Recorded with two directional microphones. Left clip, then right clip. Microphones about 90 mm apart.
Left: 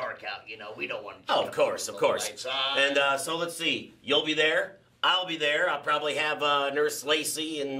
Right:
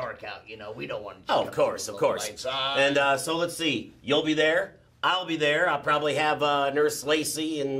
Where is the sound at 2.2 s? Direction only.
40° right (ahead or behind).